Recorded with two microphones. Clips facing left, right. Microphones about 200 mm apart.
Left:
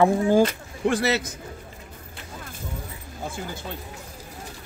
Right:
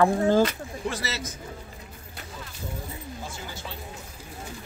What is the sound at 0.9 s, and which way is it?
Speech, 60° left (ahead or behind).